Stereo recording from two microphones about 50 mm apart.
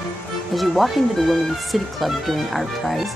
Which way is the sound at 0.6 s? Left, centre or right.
Centre.